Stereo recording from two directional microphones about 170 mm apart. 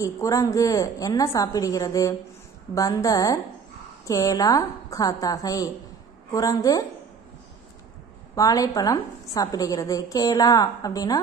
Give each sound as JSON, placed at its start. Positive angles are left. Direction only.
{"t": 0.0, "sound": "a woman's voice", "side_deg": 20}
{"t": 8.4, "sound": "a woman's voice", "side_deg": 20}